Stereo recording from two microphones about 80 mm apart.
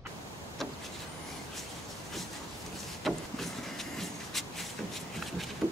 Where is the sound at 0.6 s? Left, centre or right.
Centre.